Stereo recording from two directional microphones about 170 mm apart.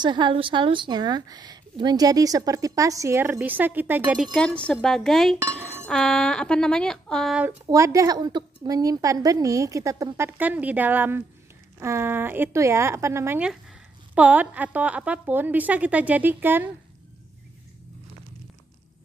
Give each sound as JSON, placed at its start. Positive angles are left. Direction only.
{"t": 0.0, "sound": "a woman's voice", "side_deg": -25}
{"t": 7.4, "sound": "a woman's voice", "side_deg": -20}